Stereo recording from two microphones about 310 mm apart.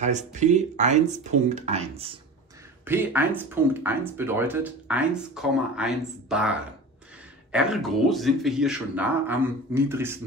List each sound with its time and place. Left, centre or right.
0.0 s speech: right
2.8 s speech: centre
7.5 s speech: centre